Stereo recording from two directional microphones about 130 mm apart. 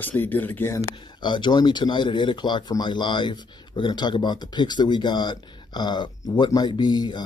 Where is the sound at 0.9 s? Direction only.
35° left (ahead or behind).